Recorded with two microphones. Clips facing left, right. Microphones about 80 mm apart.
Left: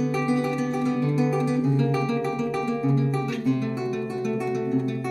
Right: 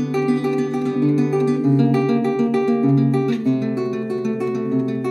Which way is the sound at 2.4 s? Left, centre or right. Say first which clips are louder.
Right 8 dB; right.